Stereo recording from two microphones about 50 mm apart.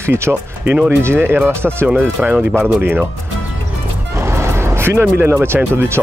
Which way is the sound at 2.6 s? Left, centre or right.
Right.